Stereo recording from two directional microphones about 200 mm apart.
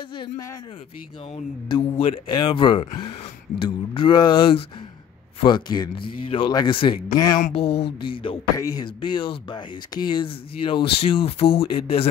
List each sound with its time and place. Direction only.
0.1 s speech: 20° left (ahead or behind)